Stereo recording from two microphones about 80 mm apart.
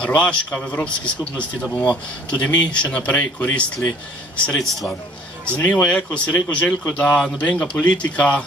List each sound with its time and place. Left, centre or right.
0.0 s a man's voice: centre
5.4 s a man's voice: centre